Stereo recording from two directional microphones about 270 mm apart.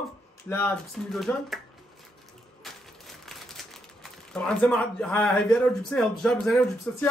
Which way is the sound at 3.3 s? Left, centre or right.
Centre.